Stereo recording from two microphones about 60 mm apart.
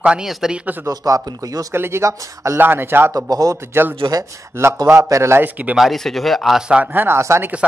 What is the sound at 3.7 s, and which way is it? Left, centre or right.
Speech, right.